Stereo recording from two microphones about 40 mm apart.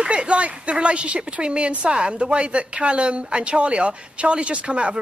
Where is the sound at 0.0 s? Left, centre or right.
Right.